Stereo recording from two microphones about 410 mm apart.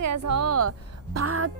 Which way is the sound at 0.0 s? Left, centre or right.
Right.